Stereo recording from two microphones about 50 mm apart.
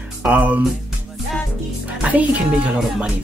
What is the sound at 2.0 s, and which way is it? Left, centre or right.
Speech, right.